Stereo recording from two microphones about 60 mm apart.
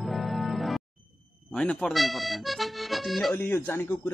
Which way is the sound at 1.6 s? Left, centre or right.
Centre.